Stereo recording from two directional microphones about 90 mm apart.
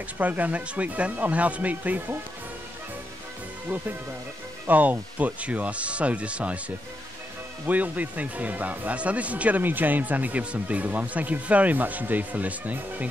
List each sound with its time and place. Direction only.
0.2 s speech: 20° right (ahead or behind)
4.6 s speech: 20° right (ahead or behind)
7.6 s speech: 20° right (ahead or behind)